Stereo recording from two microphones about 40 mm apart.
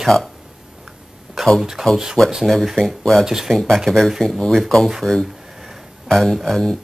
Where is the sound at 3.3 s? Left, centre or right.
Centre.